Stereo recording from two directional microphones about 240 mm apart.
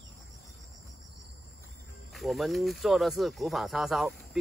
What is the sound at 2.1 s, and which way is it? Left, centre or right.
Speech, centre.